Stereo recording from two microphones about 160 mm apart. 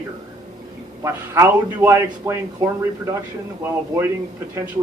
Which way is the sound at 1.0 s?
20° right (ahead or behind).